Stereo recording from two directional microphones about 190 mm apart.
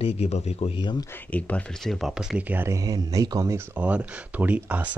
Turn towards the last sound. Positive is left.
turn(degrees=-10)  # may be behind; listen again after turning